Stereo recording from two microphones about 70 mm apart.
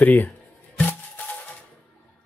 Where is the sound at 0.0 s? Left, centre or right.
Left.